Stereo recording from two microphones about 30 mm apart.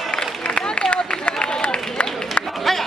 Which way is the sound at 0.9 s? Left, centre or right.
Left.